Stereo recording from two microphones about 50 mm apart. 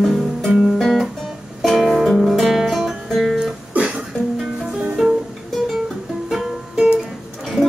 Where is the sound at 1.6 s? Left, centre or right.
Centre.